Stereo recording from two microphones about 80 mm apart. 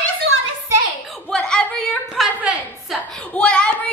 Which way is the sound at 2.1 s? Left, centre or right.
Centre.